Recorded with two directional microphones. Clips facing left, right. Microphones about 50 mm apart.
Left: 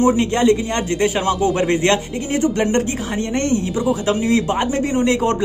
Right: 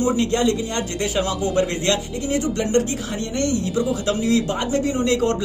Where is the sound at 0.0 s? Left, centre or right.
Left.